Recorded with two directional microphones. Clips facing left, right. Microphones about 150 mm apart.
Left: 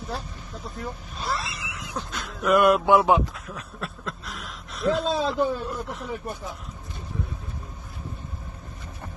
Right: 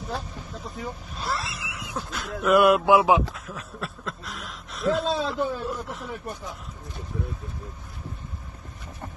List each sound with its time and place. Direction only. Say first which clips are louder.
0.7 s speech: even; centre (ahead or behind)